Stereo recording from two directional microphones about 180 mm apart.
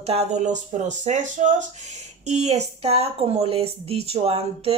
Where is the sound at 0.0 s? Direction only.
35° right (ahead or behind).